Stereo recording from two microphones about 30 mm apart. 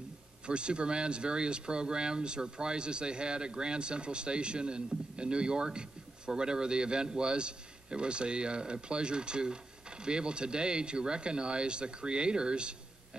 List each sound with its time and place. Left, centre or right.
0.5 s speech: right